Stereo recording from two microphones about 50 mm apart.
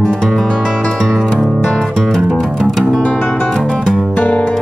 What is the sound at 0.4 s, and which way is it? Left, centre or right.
Music, centre.